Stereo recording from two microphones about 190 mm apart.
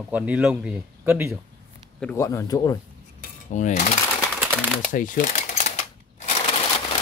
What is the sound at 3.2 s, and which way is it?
Cutlery, 40° left (ahead or behind).